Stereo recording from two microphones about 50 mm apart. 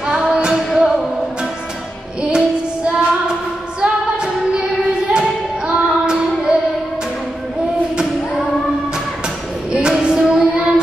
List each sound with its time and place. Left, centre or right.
0.0 s music: centre
0.6 s music: centre
2.3 s child singing: centre
3.8 s female singing: centre
5.7 s child singing: centre
9.7 s music: centre